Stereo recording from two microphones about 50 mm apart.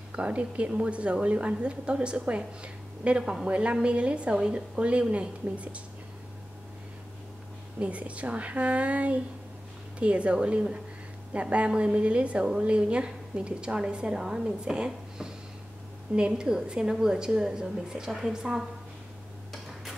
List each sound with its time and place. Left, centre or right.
0.1 s a woman's voice: right
7.8 s a woman's voice: right